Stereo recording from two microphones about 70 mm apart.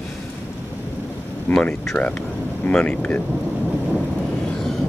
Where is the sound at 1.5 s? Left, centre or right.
Left.